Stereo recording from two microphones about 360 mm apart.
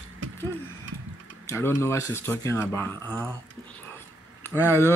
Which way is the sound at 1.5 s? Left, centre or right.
Centre.